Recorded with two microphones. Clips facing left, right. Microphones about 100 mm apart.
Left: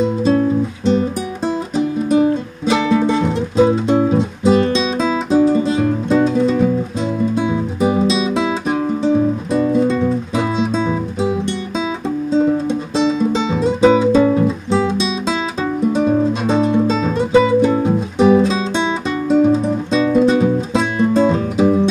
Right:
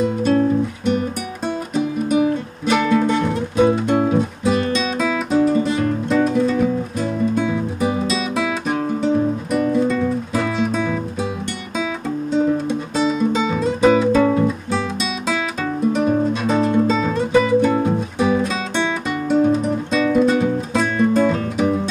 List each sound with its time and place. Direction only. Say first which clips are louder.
0.0 s music: left 2 dB; 25° left (ahead or behind)
12.4 s music: left 3 dB; 25° left (ahead or behind)